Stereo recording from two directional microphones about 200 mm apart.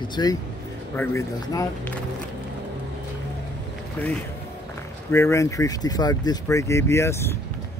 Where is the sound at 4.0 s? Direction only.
10° left (ahead or behind).